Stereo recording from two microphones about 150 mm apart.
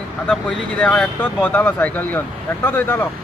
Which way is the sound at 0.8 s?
10° left (ahead or behind).